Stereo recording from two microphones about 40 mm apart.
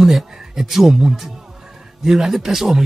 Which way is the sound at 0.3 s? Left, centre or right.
Centre.